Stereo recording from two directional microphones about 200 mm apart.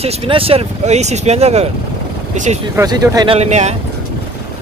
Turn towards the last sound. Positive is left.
turn(degrees=-35)  # may be behind; listen again after turning